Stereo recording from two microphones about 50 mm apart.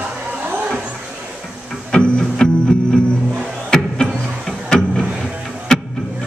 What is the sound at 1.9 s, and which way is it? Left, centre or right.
Music, centre.